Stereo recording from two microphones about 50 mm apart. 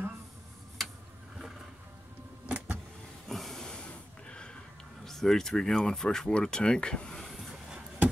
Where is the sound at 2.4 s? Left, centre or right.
Right.